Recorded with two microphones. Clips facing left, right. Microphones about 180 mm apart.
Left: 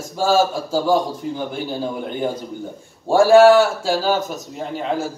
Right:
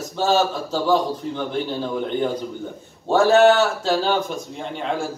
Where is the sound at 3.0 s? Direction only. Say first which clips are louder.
Left 4 dB; 10° left (ahead or behind).